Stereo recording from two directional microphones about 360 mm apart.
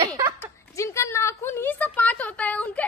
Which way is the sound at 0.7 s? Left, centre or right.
Centre.